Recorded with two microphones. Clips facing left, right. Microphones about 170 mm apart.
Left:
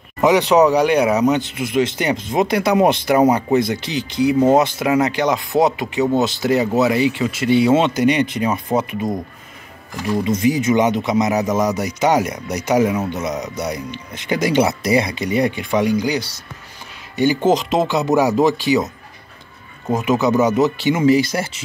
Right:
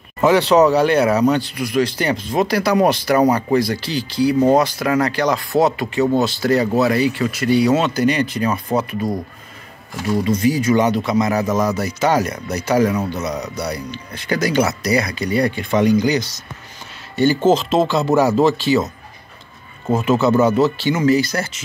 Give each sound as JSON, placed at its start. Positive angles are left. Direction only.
{"t": 0.2, "sound": "speech", "side_deg": 15}
{"t": 19.9, "sound": "speech", "side_deg": 15}